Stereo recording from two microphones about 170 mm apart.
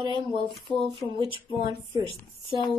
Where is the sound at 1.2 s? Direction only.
30° right (ahead or behind).